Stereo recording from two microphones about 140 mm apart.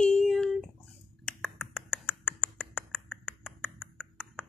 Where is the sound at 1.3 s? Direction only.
5° left (ahead or behind).